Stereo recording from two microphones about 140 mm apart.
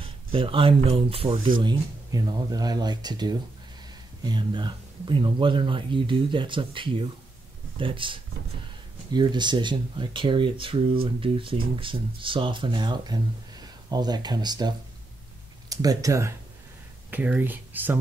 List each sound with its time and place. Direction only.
0.0 s speech: 40° right (ahead or behind)
1.6 s speech: 30° right (ahead or behind)
15.7 s speech: 25° right (ahead or behind)